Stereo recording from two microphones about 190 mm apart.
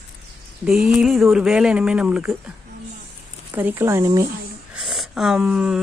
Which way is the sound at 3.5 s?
10° right (ahead or behind).